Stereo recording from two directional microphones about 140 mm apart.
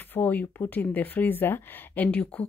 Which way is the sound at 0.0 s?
15° left (ahead or behind).